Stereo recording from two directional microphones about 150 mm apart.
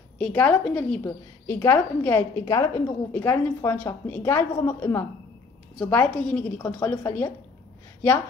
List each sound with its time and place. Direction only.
0.2 s a woman's voice: 10° left (ahead or behind)